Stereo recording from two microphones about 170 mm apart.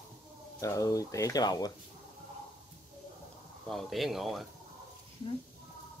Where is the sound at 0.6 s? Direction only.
20° left (ahead or behind).